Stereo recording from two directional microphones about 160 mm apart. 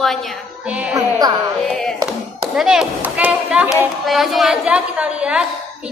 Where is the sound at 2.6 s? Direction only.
5° right (ahead or behind).